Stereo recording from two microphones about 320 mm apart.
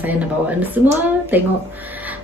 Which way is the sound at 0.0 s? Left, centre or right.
Centre.